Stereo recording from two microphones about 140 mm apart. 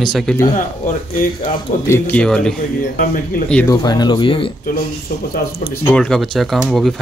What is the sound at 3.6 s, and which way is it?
Speech, 30° left (ahead or behind).